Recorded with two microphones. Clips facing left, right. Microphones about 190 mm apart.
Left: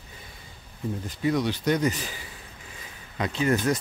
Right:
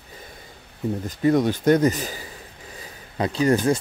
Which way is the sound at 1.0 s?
45° right (ahead or behind).